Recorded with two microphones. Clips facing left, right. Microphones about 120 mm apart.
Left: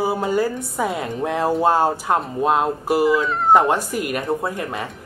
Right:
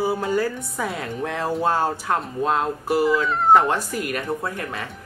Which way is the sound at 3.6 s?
15° left (ahead or behind).